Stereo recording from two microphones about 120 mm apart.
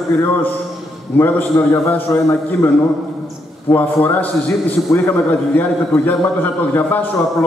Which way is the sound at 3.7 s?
15° left (ahead or behind).